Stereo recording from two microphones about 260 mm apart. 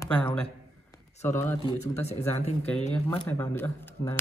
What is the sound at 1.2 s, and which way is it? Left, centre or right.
Speech, centre.